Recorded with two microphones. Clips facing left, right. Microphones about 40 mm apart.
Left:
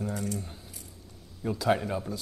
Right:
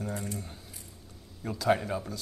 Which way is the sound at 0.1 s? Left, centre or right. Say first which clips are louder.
Left 3 dB; right.